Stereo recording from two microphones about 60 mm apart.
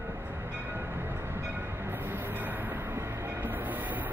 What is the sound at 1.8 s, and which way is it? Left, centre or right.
Train, right.